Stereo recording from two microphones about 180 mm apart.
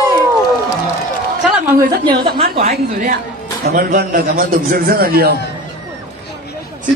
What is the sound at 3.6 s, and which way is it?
A man's voice, 50° right (ahead or behind).